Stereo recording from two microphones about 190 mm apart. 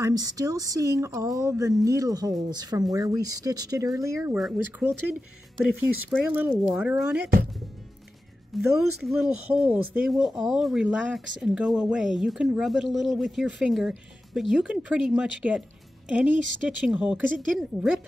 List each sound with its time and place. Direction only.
0.0 s speech: 20° right (ahead or behind)
8.5 s speech: centre (ahead or behind)